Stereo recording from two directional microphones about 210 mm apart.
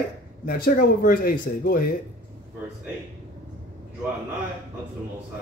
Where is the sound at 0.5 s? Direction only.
45° left (ahead or behind).